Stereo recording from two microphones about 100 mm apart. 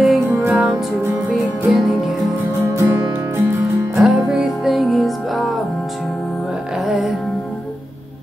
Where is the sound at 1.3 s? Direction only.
Centre (ahead or behind).